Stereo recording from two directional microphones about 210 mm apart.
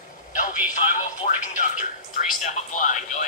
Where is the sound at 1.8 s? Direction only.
35° left (ahead or behind).